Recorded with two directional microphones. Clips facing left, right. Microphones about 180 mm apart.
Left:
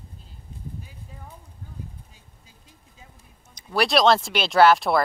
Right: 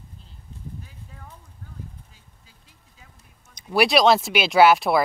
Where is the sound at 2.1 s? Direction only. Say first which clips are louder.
Left 2 dB; 20° left (ahead or behind).